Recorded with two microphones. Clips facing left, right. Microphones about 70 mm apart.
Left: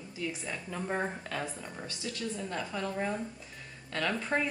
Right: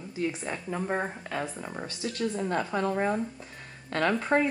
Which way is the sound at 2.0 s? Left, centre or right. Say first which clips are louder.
Right 7 dB; right.